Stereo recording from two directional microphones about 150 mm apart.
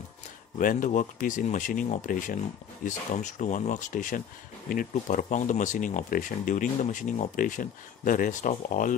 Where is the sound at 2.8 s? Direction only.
55° left (ahead or behind).